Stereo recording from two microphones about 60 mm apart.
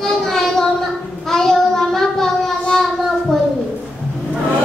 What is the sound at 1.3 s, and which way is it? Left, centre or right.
Child singing, centre.